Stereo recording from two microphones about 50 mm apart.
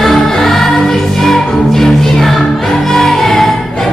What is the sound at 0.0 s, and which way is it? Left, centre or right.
Music, centre.